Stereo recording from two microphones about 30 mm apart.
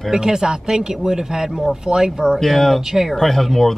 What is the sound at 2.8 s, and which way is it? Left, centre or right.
Speech, centre.